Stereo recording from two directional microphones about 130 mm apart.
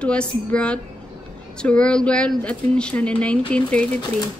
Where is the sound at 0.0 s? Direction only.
10° left (ahead or behind).